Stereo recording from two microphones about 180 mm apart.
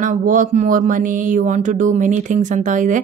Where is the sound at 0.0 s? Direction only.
45° right (ahead or behind).